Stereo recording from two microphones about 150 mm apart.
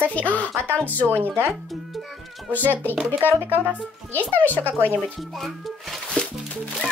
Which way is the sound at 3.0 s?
15° right (ahead or behind).